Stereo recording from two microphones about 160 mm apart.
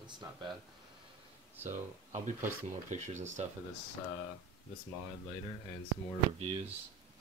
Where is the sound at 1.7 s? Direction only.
50° right (ahead or behind).